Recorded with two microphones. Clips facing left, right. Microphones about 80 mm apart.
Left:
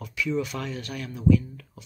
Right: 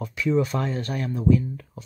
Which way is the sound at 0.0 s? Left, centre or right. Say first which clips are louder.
Right 5 dB; right.